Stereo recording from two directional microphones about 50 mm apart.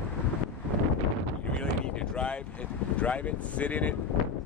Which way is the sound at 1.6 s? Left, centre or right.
Left.